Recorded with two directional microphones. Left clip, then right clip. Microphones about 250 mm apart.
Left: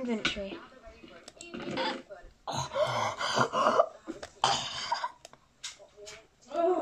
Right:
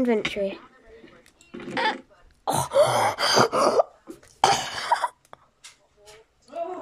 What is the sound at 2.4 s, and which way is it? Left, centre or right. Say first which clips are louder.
Cough: right 11 dB; right.